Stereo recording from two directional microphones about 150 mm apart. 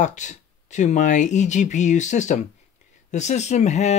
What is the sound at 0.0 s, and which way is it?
Speech, 55° left (ahead or behind).